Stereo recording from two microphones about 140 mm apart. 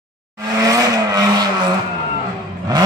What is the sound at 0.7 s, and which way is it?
Vehicle, 25° right (ahead or behind).